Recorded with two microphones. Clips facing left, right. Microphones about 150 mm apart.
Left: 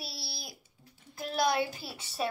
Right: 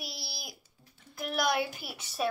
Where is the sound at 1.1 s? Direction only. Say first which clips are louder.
Left 1 dB; 30° left (ahead or behind).